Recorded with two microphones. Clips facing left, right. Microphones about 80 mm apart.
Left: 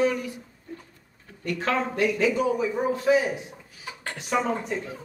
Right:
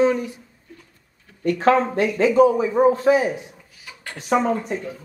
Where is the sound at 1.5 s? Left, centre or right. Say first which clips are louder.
Right 9 dB; right.